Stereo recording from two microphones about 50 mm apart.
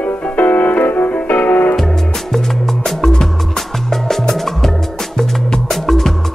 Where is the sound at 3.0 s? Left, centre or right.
Centre.